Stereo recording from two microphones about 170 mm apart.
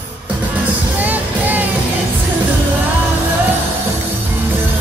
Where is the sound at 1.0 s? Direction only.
10° right (ahead or behind).